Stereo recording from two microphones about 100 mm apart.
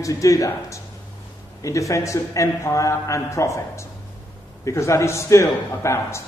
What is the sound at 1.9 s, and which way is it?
A man's voice, 30° left (ahead or behind).